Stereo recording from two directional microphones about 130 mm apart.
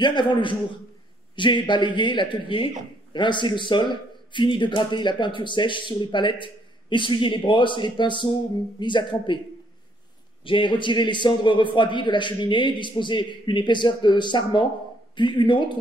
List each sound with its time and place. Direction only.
0.0 s speech: 35° left (ahead or behind)
10.4 s speech: 40° left (ahead or behind)